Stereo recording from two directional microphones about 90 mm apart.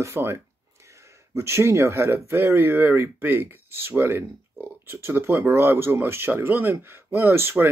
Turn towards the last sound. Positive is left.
turn(degrees=-25)  # may be behind; listen again after turning